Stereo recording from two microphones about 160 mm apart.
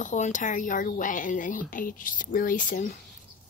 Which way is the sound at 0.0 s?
50° left (ahead or behind).